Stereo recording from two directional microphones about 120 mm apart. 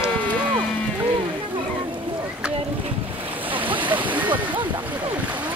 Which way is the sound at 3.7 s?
45° right (ahead or behind).